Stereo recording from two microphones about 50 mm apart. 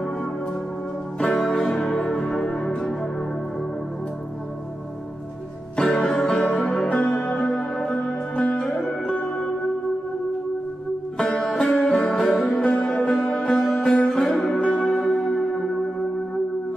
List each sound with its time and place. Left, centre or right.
1.1 s music: centre
5.8 s music: centre
11.1 s music: centre
15.0 s singing bowl: centre